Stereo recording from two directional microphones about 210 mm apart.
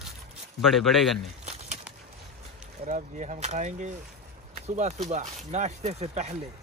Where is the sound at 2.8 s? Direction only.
35° right (ahead or behind).